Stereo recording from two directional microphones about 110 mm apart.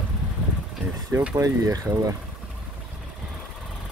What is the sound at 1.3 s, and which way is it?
Speech, 30° right (ahead or behind).